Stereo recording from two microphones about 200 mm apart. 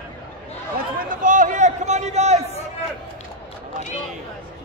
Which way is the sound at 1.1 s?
40° right (ahead or behind).